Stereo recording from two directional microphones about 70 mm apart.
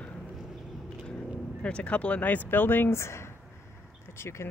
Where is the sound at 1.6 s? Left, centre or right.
Centre; by 3.1 s left.